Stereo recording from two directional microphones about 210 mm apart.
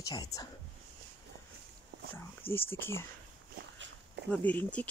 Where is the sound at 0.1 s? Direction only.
15° left (ahead or behind).